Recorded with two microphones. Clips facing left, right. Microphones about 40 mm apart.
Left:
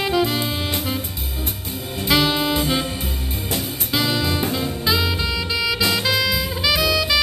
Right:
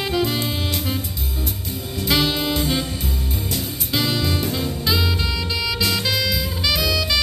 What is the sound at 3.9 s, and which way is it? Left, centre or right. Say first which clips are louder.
Music: left 1 dB; centre.